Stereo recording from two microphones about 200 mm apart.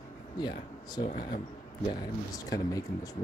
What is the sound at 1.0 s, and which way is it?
Speech, 45° left (ahead or behind).